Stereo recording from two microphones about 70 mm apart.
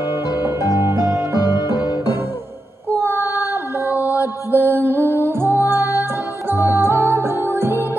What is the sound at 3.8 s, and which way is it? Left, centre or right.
Mantra, right.